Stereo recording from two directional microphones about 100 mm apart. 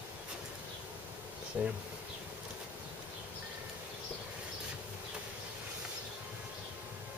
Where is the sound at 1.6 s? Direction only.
15° right (ahead or behind).